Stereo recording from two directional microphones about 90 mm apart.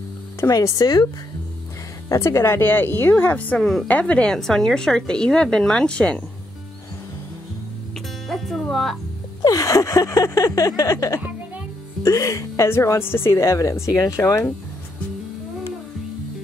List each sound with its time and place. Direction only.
0.5 s speech: 40° left (ahead or behind)
2.0 s a woman's voice: 30° left (ahead or behind); by 6.2 s 10° left (ahead or behind)
8.3 s music: centre (ahead or behind)
9.4 s a sound: 40° left (ahead or behind)
12.0 s speech: 40° left (ahead or behind)